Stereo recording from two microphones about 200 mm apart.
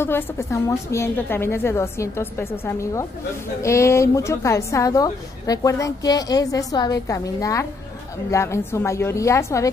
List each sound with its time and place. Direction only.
0.0 s a woman's voice: 10° left (ahead or behind)